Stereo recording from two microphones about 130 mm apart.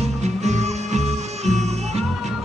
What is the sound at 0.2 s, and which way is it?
Music, 60° right (ahead or behind).